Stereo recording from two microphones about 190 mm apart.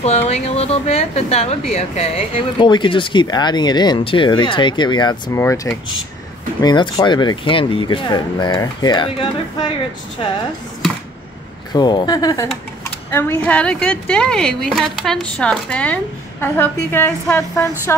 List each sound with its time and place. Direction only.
0.0 s speech: 35° left (ahead or behind)
11.7 s speech: 25° left (ahead or behind)
13.1 s speech: 10° left (ahead or behind)